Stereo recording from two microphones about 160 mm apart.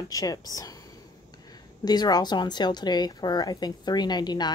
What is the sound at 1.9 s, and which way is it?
Speech, 25° left (ahead or behind).